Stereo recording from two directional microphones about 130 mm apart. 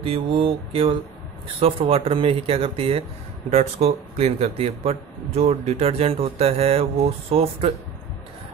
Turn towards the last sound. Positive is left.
turn(degrees=-50)  # may be behind; listen again after turning